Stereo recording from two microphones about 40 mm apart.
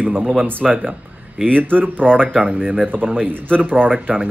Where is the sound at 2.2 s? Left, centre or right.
Right.